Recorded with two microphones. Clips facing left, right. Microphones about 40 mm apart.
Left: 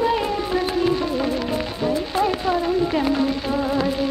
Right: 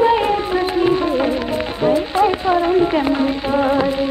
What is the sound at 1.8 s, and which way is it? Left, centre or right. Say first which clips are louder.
Speech: right 7 dB; right.